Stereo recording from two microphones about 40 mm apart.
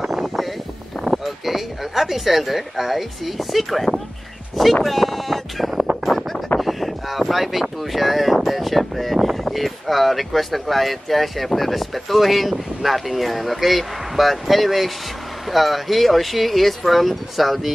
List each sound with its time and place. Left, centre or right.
0.0 s a sound: centre
1.2 s speech: centre
6.6 s wind noise: centre
7.8 s speech: centre